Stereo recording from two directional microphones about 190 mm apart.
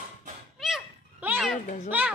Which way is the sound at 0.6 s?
5° right (ahead or behind).